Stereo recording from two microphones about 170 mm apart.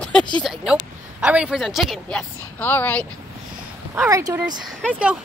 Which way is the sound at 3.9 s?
15° right (ahead or behind).